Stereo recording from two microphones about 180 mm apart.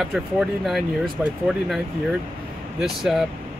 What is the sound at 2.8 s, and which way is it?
Speech, centre (ahead or behind).